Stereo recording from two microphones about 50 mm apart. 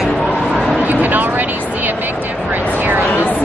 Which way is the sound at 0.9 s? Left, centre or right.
Right.